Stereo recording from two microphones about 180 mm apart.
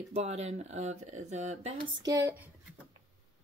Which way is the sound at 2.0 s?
20° right (ahead or behind).